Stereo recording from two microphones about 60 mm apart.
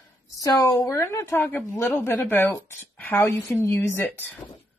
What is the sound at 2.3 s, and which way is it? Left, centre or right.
A woman's voice, left.